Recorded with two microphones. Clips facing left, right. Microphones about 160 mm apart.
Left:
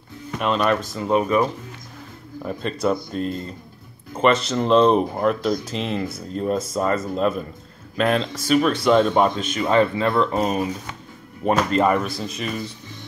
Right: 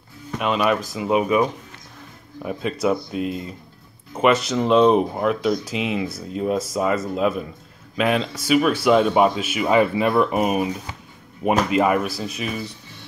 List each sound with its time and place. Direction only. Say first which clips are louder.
0.4 s speech: even; 5° right (ahead or behind)